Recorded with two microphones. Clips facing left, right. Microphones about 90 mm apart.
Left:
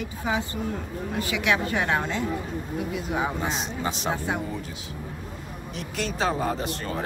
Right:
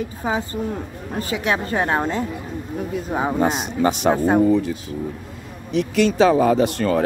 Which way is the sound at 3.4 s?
60° right (ahead or behind).